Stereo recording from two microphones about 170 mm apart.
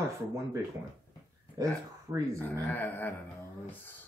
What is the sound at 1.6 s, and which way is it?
Speech, 20° right (ahead or behind).